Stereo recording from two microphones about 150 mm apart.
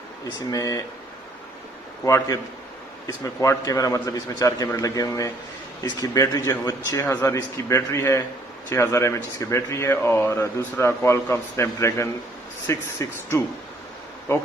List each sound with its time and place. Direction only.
0.5 s a man's voice: 25° left (ahead or behind)
2.0 s a man's voice: 25° left (ahead or behind)